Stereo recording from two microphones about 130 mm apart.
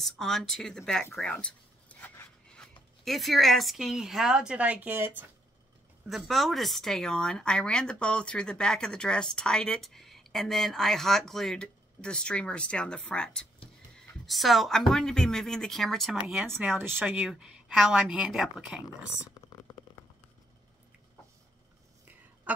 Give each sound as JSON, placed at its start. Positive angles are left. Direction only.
{"t": 0.0, "sound": "speech", "side_deg": 0}
{"t": 6.0, "sound": "speech", "side_deg": 0}
{"t": 16.6, "sound": "speech", "side_deg": -15}